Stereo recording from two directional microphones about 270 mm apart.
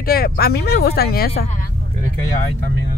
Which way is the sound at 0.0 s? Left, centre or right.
Left.